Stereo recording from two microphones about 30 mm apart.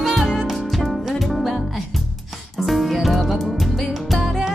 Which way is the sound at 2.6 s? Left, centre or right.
Centre.